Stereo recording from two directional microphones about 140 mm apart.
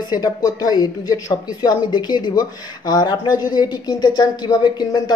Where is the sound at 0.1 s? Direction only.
30° left (ahead or behind).